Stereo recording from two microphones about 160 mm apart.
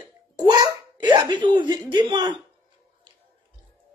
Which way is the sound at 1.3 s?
30° right (ahead or behind).